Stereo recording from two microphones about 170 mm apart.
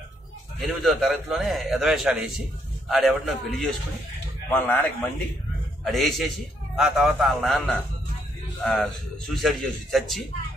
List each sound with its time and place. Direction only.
0.6 s a man's voice: centre (ahead or behind)
4.6 s a man's voice: 10° left (ahead or behind)
5.9 s a man's voice: centre (ahead or behind)